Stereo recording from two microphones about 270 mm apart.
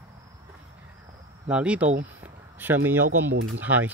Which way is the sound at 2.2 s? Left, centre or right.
Centre.